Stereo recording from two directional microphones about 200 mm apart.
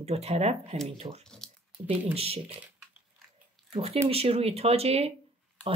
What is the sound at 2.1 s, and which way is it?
Speech, 30° right (ahead or behind).